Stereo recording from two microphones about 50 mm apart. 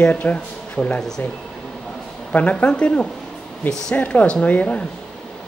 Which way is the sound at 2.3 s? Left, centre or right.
Left.